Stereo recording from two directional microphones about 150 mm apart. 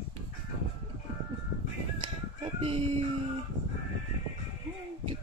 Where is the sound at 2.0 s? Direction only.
35° right (ahead or behind).